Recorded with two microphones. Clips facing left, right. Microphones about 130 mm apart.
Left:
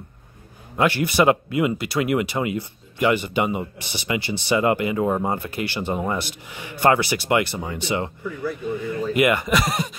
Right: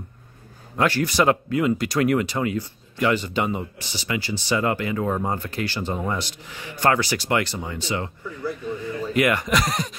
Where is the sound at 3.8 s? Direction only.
60° left (ahead or behind).